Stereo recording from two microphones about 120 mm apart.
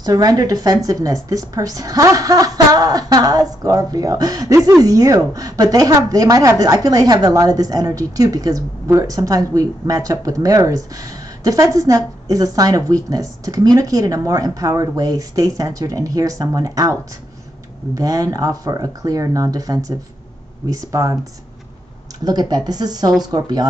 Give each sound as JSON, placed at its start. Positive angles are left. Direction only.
{"t": 0.0, "sound": "a woman's voice", "side_deg": -30}
{"t": 17.9, "sound": "a woman's voice", "side_deg": -30}
{"t": 22.2, "sound": "a woman's voice", "side_deg": -35}